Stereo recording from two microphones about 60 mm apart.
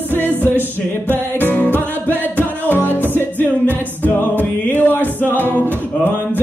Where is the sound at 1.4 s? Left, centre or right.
Left.